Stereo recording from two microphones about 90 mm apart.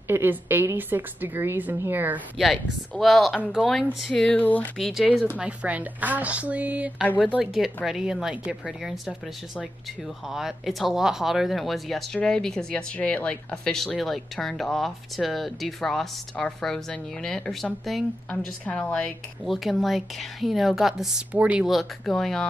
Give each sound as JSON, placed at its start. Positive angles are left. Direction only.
{"t": 0.1, "sound": "a woman's voice", "side_deg": -25}
{"t": 2.3, "sound": "speech", "side_deg": 0}
{"t": 4.7, "sound": "speech", "side_deg": 0}
{"t": 5.4, "sound": "speech", "side_deg": -15}
{"t": 7.5, "sound": "speech", "side_deg": 0}
{"t": 10.3, "sound": "speech", "side_deg": -5}
{"t": 18.8, "sound": "speech", "side_deg": 15}
{"t": 19.4, "sound": "speech", "side_deg": 0}
{"t": 21.3, "sound": "speech", "side_deg": -15}
{"t": 21.6, "sound": "speech", "side_deg": 0}